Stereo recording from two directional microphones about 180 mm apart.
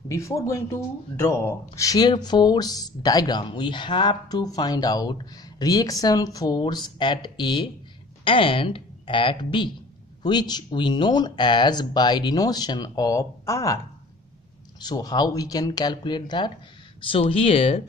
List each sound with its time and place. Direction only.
0.1 s speech: 15° left (ahead or behind)
14.8 s speech: 20° left (ahead or behind)